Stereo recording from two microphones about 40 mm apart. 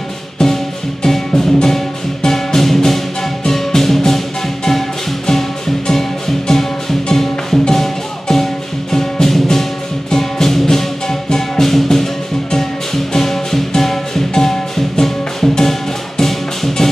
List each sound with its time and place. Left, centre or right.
0.4 s music: centre